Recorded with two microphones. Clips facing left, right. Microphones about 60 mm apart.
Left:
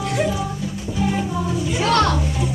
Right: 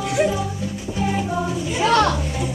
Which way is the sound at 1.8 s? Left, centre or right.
Centre.